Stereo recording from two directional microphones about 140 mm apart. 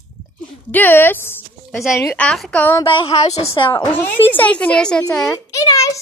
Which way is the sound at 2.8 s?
45° left (ahead or behind).